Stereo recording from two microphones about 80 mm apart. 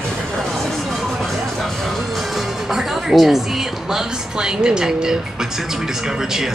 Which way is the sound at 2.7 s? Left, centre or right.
Centre.